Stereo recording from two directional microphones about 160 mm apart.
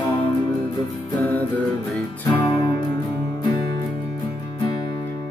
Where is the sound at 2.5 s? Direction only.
30° left (ahead or behind).